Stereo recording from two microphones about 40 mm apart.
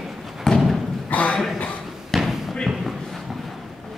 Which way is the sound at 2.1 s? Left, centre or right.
Centre.